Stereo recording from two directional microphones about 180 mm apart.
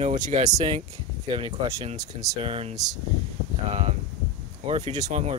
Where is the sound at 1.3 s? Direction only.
30° right (ahead or behind).